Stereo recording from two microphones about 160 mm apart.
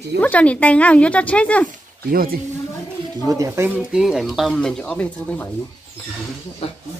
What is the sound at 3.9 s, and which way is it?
Speech, 5° right (ahead or behind).